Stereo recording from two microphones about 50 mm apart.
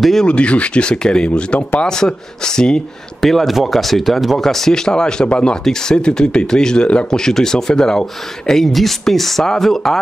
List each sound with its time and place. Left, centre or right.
0.0 s speech: centre
0.3 s speech: left
3.2 s speech: centre